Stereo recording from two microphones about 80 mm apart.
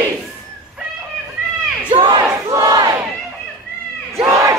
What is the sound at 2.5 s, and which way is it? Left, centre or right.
Battle cry, right.